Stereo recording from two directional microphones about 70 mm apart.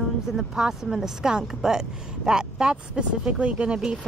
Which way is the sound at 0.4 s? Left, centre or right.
Centre.